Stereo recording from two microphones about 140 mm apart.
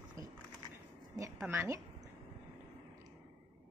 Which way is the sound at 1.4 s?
15° right (ahead or behind).